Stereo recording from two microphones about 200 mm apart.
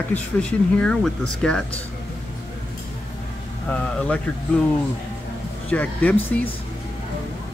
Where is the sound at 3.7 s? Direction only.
5° left (ahead or behind).